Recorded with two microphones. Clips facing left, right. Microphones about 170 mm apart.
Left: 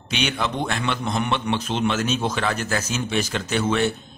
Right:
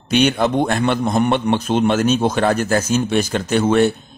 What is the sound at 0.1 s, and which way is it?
A man's voice, 45° right (ahead or behind).